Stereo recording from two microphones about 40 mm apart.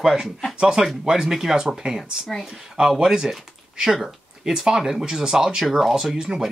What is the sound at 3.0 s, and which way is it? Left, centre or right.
Speech, centre.